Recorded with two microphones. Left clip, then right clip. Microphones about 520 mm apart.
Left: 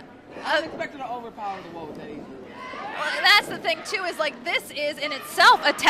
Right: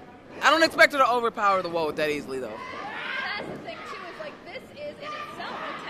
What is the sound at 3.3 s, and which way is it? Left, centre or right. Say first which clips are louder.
A woman's voice: left 15 dB; left.